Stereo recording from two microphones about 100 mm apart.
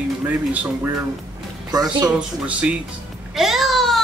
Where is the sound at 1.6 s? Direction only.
40° right (ahead or behind).